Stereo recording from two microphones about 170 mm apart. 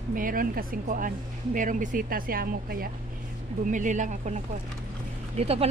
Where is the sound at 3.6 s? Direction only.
50° right (ahead or behind).